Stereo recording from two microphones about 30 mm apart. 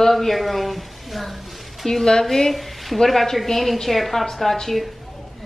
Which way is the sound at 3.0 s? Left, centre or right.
Centre.